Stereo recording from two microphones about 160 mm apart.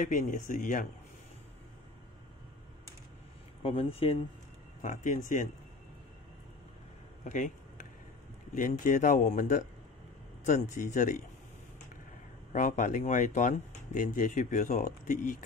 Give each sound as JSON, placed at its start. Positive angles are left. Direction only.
{"t": 0.0, "sound": "a man's voice", "side_deg": 55}
{"t": 3.6, "sound": "speech", "side_deg": 35}
{"t": 4.8, "sound": "speech", "side_deg": 50}
{"t": 7.2, "sound": "a sound", "side_deg": 55}
{"t": 8.5, "sound": "a man's voice", "side_deg": 55}
{"t": 12.5, "sound": "speech", "side_deg": 55}